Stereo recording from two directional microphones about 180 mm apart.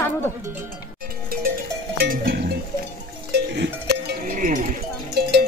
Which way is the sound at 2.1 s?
55° right (ahead or behind).